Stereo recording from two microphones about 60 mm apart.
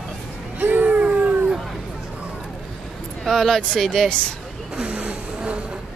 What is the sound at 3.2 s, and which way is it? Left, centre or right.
Speech, centre.